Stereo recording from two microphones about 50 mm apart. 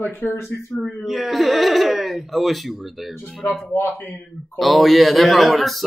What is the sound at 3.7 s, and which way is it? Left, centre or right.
Speech, left.